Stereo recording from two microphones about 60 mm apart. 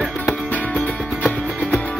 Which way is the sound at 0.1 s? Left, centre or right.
Left.